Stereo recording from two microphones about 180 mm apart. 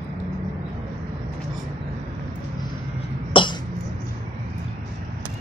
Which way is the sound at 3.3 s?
30° left (ahead or behind).